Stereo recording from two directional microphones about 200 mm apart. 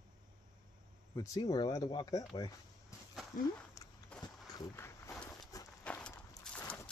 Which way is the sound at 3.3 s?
45° left (ahead or behind).